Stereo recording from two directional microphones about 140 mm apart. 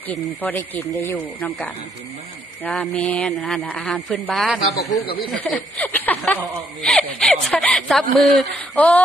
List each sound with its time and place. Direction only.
0.1 s a man's voice: 10° left (ahead or behind)
5.0 s speech: 90° left
5.8 s a man's voice: 10° left (ahead or behind)